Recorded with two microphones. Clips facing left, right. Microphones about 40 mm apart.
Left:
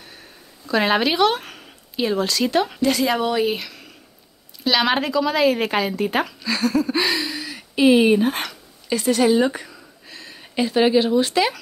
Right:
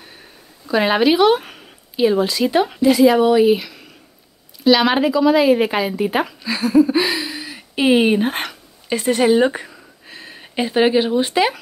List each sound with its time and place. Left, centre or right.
0.7 s speech: centre